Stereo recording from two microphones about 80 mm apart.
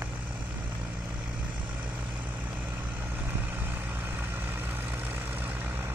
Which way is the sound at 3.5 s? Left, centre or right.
Right.